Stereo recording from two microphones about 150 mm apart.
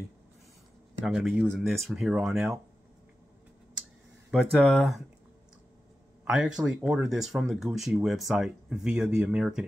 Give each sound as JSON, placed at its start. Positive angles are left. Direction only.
{"t": 1.0, "sound": "speech", "side_deg": -5}
{"t": 4.3, "sound": "speech", "side_deg": 0}
{"t": 6.2, "sound": "speech", "side_deg": -5}